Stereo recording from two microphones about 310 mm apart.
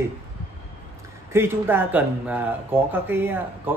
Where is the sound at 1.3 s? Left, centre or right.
Centre.